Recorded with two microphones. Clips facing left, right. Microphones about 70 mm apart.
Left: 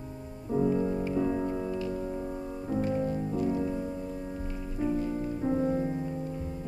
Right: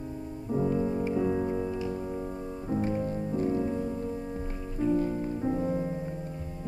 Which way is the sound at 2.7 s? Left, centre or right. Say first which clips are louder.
Even; right.